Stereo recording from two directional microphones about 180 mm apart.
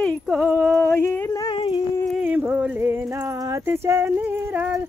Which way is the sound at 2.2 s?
10° right (ahead or behind).